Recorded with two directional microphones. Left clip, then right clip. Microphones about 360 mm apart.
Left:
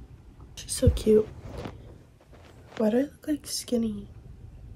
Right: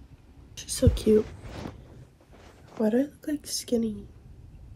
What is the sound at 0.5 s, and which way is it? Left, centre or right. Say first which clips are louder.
Speech: right 1 dB; centre.